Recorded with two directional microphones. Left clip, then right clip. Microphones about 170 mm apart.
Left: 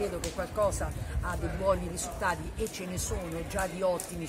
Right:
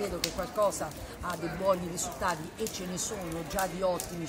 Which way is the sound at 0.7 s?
Centre (ahead or behind).